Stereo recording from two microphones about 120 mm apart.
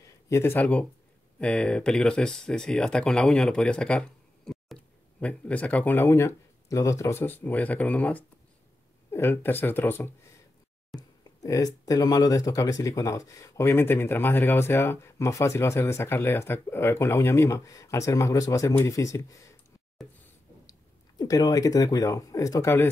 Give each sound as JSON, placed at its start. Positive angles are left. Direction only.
{"t": 0.3, "sound": "speech", "side_deg": 20}
{"t": 11.0, "sound": "speech", "side_deg": 30}
{"t": 21.2, "sound": "speech", "side_deg": 35}